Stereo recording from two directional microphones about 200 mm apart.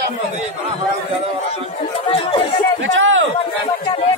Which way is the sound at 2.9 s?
75° right (ahead or behind).